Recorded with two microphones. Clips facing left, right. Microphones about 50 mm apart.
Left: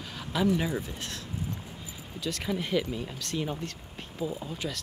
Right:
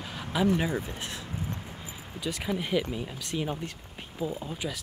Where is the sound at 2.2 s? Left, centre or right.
Centre.